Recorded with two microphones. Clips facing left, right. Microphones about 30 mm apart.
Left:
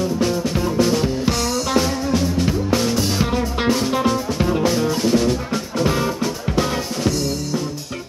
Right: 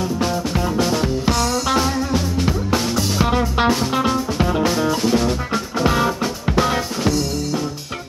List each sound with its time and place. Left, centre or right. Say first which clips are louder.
0.2 s music: left 1 dB; centre
3.3 s music: right 2 dB; centre